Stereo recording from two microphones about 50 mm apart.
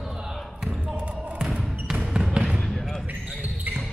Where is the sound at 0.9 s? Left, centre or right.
Right.